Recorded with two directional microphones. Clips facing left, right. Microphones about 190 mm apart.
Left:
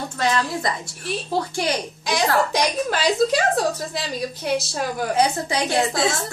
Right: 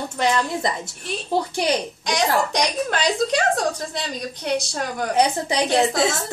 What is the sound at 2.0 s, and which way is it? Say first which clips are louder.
A woman's voice: left 1 dB; 5° left (ahead or behind).